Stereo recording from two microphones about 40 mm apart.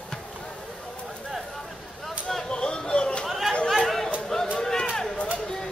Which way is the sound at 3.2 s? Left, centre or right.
Centre.